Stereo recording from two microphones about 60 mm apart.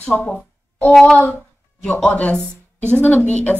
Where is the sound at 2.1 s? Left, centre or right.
Left.